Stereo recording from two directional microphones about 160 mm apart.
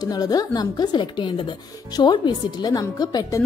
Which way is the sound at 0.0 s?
25° left (ahead or behind).